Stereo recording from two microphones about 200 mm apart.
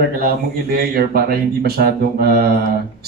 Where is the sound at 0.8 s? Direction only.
50° right (ahead or behind).